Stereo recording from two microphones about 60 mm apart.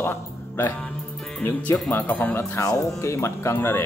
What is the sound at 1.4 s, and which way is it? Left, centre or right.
Speech, left.